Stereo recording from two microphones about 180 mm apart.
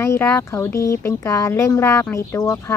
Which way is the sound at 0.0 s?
15° left (ahead or behind).